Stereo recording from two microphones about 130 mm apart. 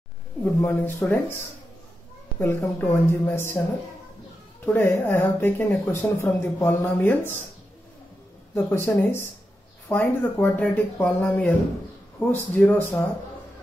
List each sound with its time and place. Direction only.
0.6 s speech: 15° left (ahead or behind)
2.3 s speech: 15° left (ahead or behind)
4.6 s speech: 15° left (ahead or behind)
8.5 s speech: 20° left (ahead or behind)